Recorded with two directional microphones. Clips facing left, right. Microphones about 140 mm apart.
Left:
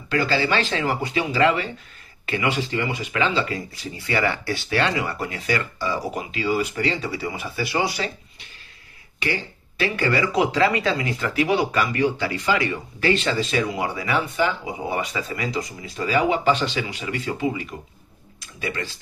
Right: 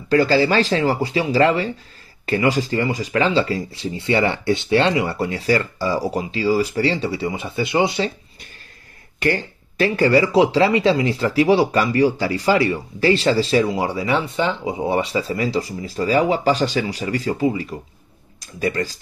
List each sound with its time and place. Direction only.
0.1 s speech: 35° right (ahead or behind)
9.2 s speech: 40° right (ahead or behind)